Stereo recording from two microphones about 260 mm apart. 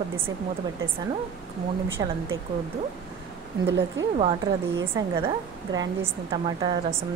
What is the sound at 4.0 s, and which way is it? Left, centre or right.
A woman's voice, centre.